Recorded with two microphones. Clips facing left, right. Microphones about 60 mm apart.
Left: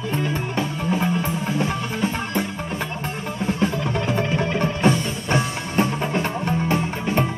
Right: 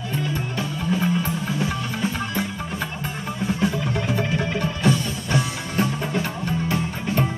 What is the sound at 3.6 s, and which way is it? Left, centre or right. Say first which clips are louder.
Music: left 2 dB; left.